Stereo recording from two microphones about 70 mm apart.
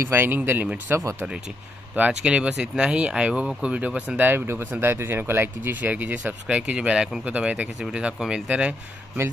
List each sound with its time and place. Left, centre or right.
0.1 s speech: right
2.0 s speech: centre
4.3 s speech: right
6.4 s speech: centre